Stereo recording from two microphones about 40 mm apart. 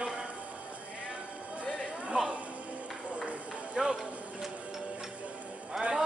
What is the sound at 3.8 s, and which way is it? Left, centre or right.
Clip-clop, centre.